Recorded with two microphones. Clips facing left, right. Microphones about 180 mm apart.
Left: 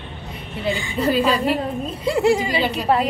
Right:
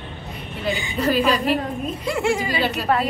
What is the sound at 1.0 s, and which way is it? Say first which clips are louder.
A woman's voice: left 1 dB; 25° left (ahead or behind).